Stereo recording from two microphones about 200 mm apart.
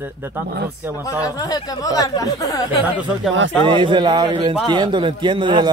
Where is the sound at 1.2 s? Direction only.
20° left (ahead or behind).